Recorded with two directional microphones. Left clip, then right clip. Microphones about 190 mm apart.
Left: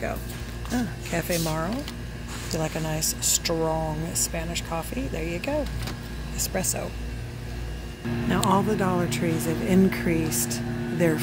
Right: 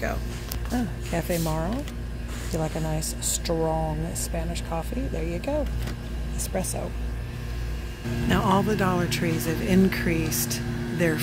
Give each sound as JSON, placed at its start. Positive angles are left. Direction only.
{"t": 1.1, "sound": "speech", "side_deg": 0}
{"t": 6.5, "sound": "speech", "side_deg": 0}
{"t": 8.3, "sound": "speech", "side_deg": 0}